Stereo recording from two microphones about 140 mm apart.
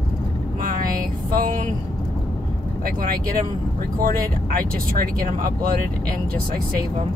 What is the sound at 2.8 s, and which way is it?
Speech, 90° right.